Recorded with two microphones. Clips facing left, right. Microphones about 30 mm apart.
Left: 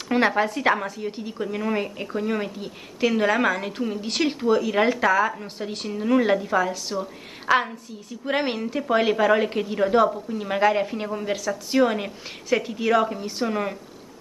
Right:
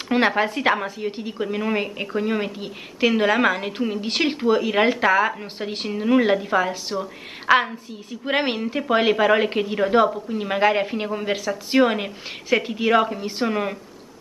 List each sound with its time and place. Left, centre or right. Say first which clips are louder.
0.1 s a woman's voice: right 1 dB; right